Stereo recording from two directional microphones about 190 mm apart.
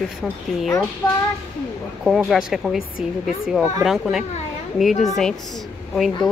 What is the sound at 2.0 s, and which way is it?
Speech, centre (ahead or behind).